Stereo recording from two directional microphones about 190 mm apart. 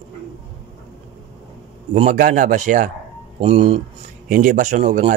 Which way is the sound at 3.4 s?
30° right (ahead or behind).